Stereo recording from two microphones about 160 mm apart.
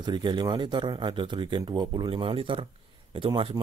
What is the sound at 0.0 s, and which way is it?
Speech, 30° right (ahead or behind).